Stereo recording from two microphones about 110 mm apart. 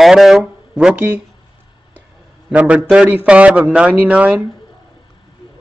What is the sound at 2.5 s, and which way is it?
A man's voice, 15° right (ahead or behind).